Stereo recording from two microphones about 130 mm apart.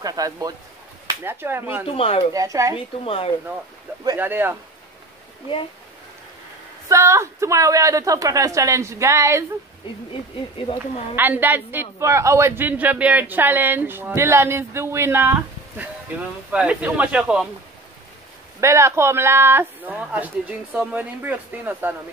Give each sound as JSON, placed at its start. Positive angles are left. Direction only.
{"t": 0.0, "sound": "a woman's voice", "side_deg": -30}
{"t": 1.2, "sound": "a man's voice", "side_deg": -15}
{"t": 1.9, "sound": "speech", "side_deg": 45}
{"t": 2.3, "sound": "a woman's voice", "side_deg": -25}
{"t": 3.0, "sound": "speech", "side_deg": 45}
{"t": 4.2, "sound": "a man's voice", "side_deg": -15}
{"t": 6.9, "sound": "a woman's voice", "side_deg": -20}
{"t": 10.7, "sound": "speech", "side_deg": 50}
{"t": 11.1, "sound": "a man's voice", "side_deg": -15}
{"t": 16.5, "sound": "a man's voice", "side_deg": -10}
{"t": 18.6, "sound": "a man's voice", "side_deg": -20}